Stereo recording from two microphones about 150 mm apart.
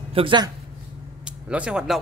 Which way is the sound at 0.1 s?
35° right (ahead or behind).